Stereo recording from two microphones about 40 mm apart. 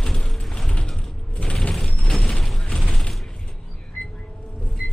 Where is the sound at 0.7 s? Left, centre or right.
Left.